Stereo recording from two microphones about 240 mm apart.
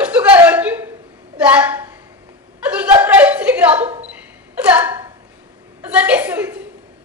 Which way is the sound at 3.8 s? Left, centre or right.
Right.